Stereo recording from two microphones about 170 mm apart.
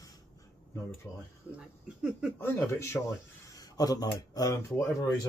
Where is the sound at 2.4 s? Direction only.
15° left (ahead or behind).